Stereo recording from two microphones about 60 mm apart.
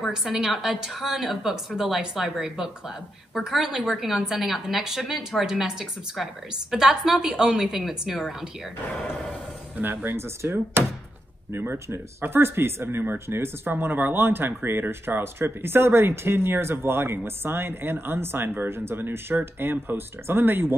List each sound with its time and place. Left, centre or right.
0.1 s a woman's voice: centre
9.8 s speech: right
10.1 s speech: right